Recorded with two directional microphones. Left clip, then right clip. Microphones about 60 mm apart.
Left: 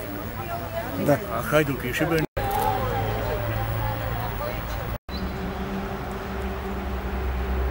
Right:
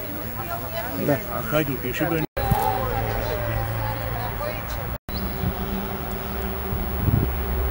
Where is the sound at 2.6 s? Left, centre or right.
Right.